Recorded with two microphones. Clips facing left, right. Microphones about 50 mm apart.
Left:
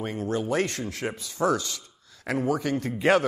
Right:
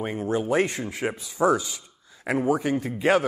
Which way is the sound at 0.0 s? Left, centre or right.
Centre.